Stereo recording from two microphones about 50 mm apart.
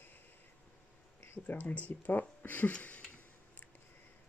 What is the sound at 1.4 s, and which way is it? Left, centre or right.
Speech, left.